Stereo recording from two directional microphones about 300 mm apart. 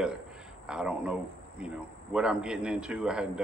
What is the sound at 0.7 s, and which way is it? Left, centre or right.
Speech, centre.